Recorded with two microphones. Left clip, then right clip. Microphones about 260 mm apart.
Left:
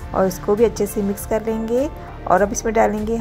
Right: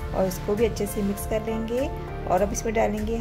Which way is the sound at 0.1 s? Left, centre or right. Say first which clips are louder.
Left 7 dB; centre.